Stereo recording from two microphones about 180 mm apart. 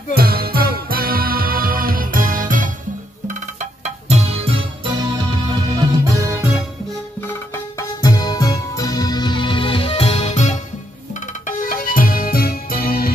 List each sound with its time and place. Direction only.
0.1 s music: 60° right (ahead or behind)
3.8 s music: 35° right (ahead or behind)
5.1 s music: 20° right (ahead or behind)
8.0 s music: 20° left (ahead or behind); by 13.1 s 60° left (ahead or behind)